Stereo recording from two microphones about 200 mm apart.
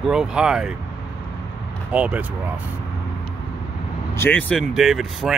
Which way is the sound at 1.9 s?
5° right (ahead or behind).